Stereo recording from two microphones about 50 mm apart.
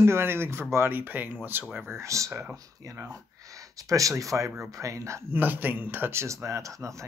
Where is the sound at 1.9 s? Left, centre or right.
Right.